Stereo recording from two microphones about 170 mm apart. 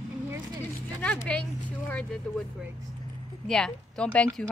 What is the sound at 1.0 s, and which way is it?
Speech, 5° left (ahead or behind).